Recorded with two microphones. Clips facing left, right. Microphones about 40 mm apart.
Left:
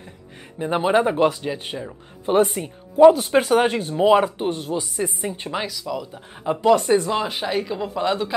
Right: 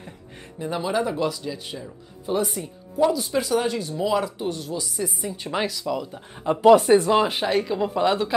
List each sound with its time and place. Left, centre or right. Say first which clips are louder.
0.6 s speech: left 6 dB; left
5.5 s speech: right 4 dB; centre